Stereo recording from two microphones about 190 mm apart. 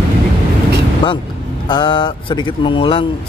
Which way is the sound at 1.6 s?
25° left (ahead or behind).